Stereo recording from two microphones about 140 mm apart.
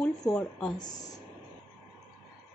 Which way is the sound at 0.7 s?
30° left (ahead or behind).